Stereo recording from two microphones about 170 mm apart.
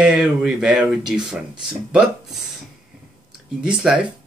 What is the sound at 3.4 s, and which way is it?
Speech, 5° right (ahead or behind).